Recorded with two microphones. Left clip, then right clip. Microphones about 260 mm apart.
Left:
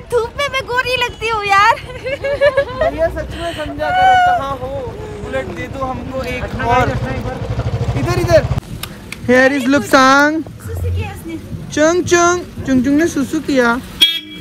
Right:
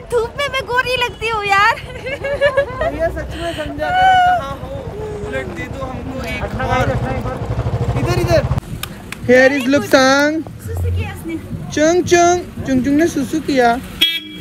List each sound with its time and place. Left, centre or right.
0.1 s a sound: centre
3.0 s speech: centre
5.3 s speech: centre
8.0 s speech: left
9.9 s speech: centre
11.7 s speech: centre